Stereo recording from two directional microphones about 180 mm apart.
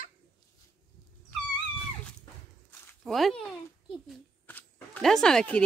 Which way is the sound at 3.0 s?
Centre (ahead or behind).